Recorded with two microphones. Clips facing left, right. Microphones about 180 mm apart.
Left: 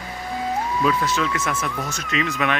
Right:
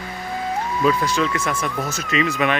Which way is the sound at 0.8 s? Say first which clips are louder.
Right 4 dB; centre (ahead or behind).